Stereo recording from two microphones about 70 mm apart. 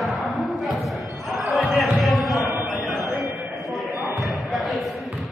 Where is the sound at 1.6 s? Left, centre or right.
Centre.